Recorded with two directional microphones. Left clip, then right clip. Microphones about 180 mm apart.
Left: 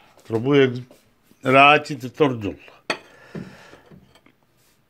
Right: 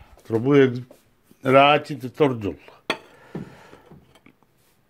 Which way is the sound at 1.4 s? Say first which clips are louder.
Left 2 dB; 5° right (ahead or behind).